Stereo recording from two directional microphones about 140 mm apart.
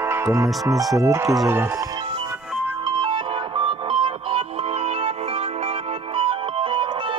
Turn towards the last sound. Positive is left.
turn(degrees=-40)  # may be behind; listen again after turning